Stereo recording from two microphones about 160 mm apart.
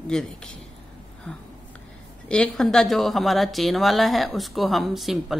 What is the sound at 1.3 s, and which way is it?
Speech, 10° left (ahead or behind).